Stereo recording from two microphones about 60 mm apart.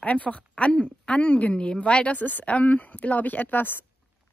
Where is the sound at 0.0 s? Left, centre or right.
Left.